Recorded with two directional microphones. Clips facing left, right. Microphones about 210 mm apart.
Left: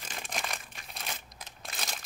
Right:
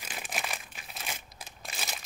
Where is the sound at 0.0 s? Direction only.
5° right (ahead or behind).